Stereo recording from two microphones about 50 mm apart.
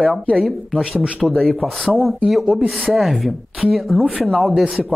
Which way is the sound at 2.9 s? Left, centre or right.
Centre.